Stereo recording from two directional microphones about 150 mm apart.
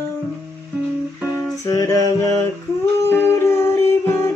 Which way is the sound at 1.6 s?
20° left (ahead or behind).